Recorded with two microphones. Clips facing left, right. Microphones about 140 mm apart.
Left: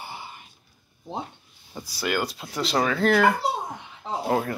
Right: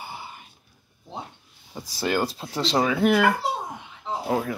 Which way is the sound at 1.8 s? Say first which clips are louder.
Right 2 dB; 30° right (ahead or behind).